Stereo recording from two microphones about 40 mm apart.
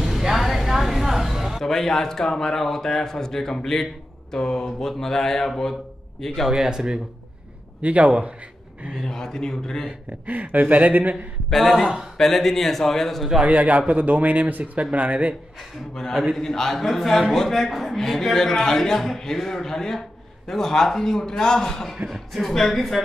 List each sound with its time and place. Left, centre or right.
0.0 s music: centre
1.6 s a man's voice: centre
6.6 s speech: centre
7.8 s speech: right
9.0 s a man's voice: centre
9.8 s speech: right
11.5 s speech: centre
13.5 s speech: right
15.9 s a man's voice: centre